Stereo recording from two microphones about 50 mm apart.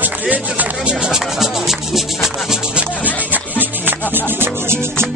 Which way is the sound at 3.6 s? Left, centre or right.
Right.